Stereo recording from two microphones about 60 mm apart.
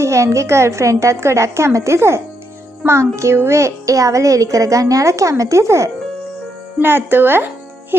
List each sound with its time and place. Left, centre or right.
0.0 s a woman's voice: right
6.8 s speech: right